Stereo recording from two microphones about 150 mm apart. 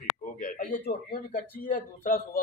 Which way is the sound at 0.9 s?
75° left (ahead or behind).